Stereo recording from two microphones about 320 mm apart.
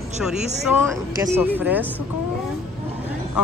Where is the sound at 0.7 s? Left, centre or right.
Centre.